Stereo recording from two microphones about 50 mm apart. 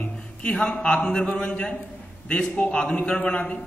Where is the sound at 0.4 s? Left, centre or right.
Centre.